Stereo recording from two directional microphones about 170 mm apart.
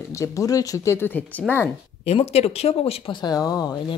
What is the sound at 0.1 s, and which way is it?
Speech, 20° left (ahead or behind).